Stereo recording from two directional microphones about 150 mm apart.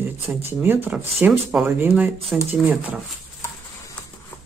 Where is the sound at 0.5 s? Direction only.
15° right (ahead or behind).